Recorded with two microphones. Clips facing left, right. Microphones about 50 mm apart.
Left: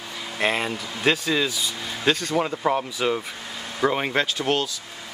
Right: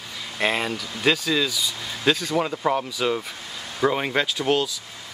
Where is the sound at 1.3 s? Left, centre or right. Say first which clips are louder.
Even; centre.